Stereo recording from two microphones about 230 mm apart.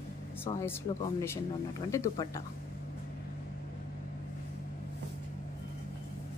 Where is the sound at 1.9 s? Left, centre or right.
Centre.